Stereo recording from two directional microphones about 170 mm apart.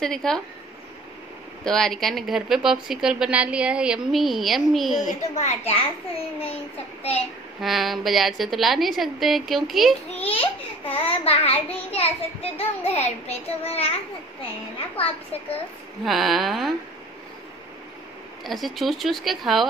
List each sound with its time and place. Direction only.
0.0 s a woman's voice: 5° left (ahead or behind)
1.6 s a woman's voice: 5° left (ahead or behind)
5.0 s a child's voice: 45° left (ahead or behind)
7.0 s child singing: 35° left (ahead or behind)
7.6 s a woman's voice: centre (ahead or behind)
10.1 s a sound: 35° left (ahead or behind)
10.9 s child singing: 35° left (ahead or behind)
16.1 s a woman's voice: centre (ahead or behind)
18.4 s a woman's voice: centre (ahead or behind)